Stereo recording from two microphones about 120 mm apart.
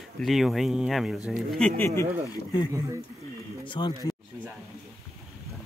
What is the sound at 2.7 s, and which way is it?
Speech, 25° right (ahead or behind).